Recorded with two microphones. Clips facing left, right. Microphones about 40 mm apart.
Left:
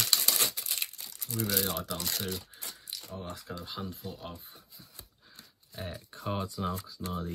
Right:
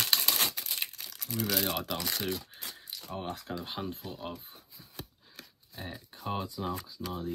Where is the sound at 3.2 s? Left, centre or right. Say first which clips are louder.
Right 5 dB; right.